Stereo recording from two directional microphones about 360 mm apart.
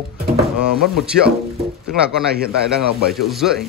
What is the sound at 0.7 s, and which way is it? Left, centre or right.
A man's voice, centre.